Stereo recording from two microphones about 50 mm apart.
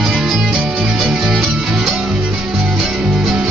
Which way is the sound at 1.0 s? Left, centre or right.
Centre.